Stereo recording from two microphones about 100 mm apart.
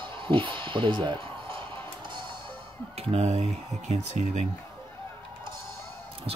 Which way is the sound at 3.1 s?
90° right.